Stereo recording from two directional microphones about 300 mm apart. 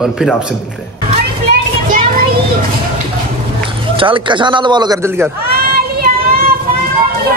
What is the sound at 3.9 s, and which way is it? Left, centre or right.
Speech, centre.